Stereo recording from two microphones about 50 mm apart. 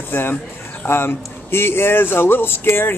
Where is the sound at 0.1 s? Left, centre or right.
Left.